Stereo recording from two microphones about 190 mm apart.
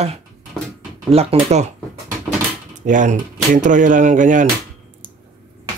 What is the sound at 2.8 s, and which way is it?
Speech, 40° right (ahead or behind).